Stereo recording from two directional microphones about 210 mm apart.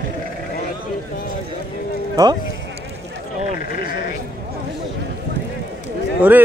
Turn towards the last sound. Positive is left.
turn(degrees=-10)  # may be behind; listen again after turning